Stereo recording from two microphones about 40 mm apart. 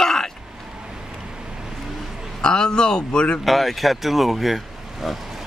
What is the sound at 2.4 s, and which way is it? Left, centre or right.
Speech, left.